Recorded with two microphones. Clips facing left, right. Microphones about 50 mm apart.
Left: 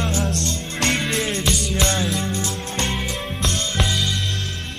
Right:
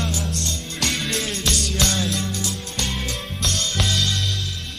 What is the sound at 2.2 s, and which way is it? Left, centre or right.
Music, left.